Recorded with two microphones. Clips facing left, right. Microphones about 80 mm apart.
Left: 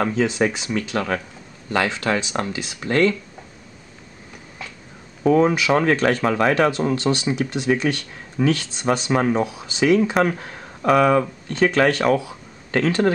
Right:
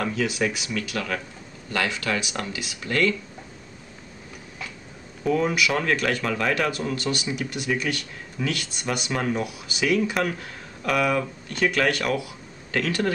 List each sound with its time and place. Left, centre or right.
0.0 s speech: left
5.2 s speech: left